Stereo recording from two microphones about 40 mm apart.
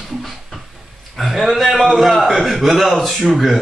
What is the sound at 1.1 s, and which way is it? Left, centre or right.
A man's voice, centre.